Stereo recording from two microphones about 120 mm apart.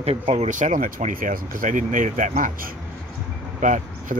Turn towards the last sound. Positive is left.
turn(degrees=-90)